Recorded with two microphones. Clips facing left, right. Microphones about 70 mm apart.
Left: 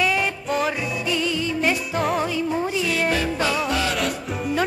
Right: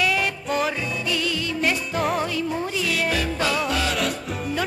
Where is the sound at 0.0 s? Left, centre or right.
Centre.